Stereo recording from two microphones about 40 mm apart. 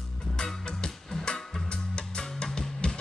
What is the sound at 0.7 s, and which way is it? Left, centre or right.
Music, left.